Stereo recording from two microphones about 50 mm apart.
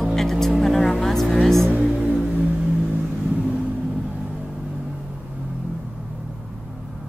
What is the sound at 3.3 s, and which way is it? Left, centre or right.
Vehicle, right.